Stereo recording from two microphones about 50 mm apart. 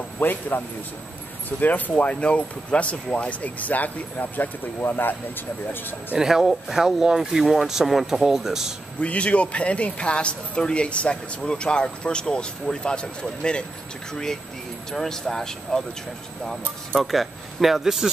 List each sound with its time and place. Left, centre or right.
0.2 s speech: left
4.7 s speech: left
6.1 s speech: centre
9.0 s speech: left; by 15.8 s centre
17.0 s speech: centre